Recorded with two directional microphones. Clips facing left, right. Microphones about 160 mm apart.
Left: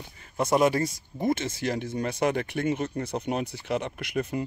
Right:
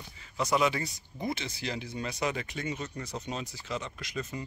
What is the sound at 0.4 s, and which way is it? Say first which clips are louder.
Speech: left 6 dB; 50° left (ahead or behind).